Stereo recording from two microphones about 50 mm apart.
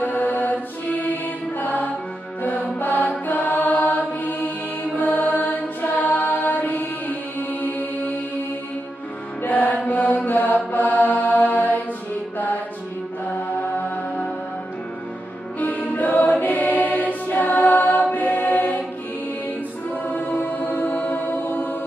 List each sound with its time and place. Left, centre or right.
0.0 s mantra: left
6.4 s music: left
9.4 s music: left
9.8 s mantra: left
15.6 s music: left
20.1 s music: left